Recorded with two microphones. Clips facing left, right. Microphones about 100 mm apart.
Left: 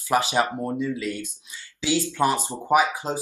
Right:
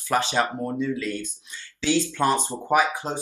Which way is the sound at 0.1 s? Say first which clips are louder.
Left 1 dB; 15° left (ahead or behind).